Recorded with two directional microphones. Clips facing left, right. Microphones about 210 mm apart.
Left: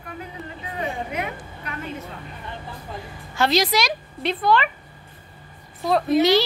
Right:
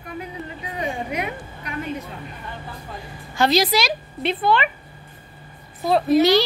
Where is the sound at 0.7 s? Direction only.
15° right (ahead or behind).